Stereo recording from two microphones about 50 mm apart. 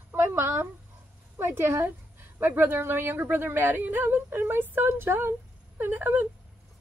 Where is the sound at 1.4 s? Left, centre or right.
Right.